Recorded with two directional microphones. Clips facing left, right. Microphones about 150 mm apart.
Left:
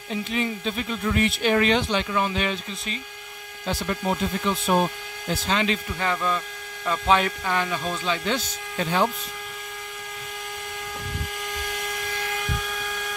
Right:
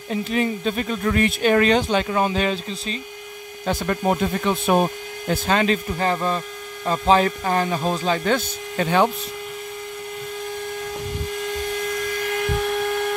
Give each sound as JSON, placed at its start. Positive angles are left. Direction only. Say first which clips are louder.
{"t": 0.1, "sound": "speech", "louder": "right 4 dB", "side_deg": -45}
{"t": 3.6, "sound": "speech", "louder": "right 5 dB", "side_deg": -50}
{"t": 12.5, "sound": "a sound", "louder": "right 10 dB", "side_deg": -60}